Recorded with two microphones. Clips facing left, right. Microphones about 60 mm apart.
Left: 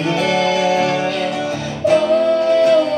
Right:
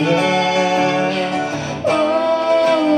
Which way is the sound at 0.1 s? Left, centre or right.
Right.